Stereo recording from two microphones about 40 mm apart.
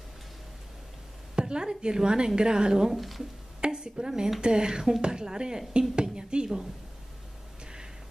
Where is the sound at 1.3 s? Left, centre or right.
Centre.